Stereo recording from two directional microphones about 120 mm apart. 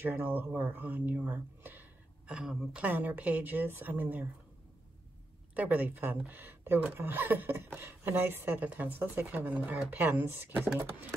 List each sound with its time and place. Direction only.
0.0 s speech: 20° right (ahead or behind)
5.5 s speech: 15° right (ahead or behind)